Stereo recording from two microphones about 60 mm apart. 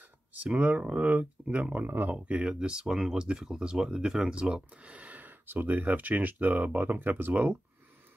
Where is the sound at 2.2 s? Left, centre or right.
Centre.